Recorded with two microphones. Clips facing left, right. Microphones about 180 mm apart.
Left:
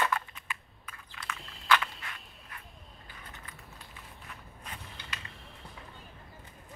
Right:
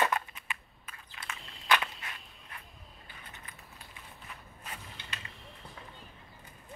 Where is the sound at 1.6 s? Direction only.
20° right (ahead or behind).